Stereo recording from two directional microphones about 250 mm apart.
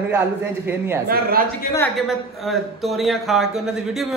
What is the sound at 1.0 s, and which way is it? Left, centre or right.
Speech, right.